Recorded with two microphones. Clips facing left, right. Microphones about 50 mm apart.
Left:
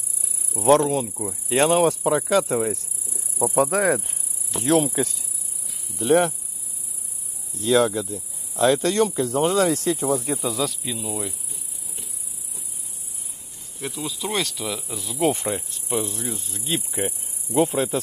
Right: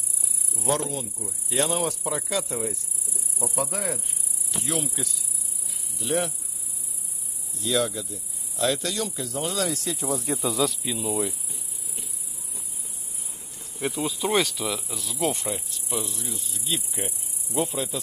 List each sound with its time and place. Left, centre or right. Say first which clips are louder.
0.7 s speech: left 10 dB; left
1.5 s speech: left 8 dB; left
3.3 s speech: left 9 dB; left
3.7 s speech: left 11 dB; left
4.6 s speech: left 11 dB; left
7.5 s speech: left 7 dB; left
10.0 s speech: left 1 dB; centre
10.4 s cricket: even; centre
13.8 s insect: right 3 dB; centre
15.1 s speech: left 5 dB; left
17.6 s speech: left 7 dB; left